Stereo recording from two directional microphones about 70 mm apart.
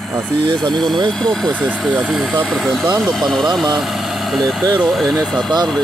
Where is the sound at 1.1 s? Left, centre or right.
Centre.